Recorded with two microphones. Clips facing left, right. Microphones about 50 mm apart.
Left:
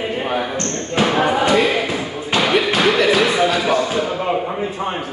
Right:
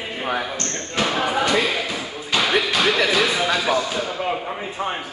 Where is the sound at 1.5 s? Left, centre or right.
Left.